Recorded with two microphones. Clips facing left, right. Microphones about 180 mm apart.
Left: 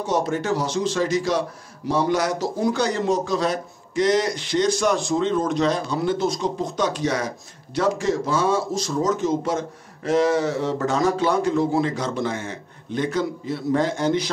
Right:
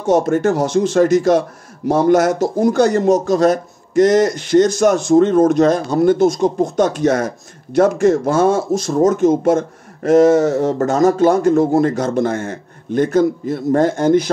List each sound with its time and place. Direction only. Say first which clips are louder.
0.0 s speech: right 9 dB; 50° right (ahead or behind)